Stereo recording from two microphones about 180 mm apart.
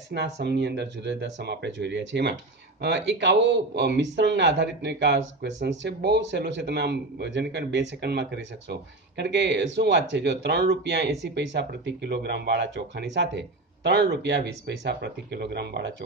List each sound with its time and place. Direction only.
0.1 s a man's voice: 70° right (ahead or behind)